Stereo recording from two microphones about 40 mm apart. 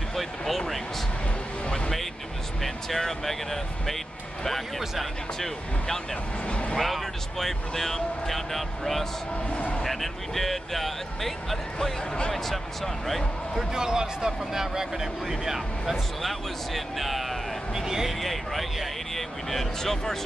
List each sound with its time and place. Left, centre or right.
0.1 s a sound: centre
3.0 s speech: centre
4.5 s speech: centre
6.4 s speech: left
6.8 s speech: centre
9.6 s speech: left
9.8 s speech: centre
13.7 s speech: centre
15.8 s speech: centre
17.8 s speech: centre
18.2 s speech: centre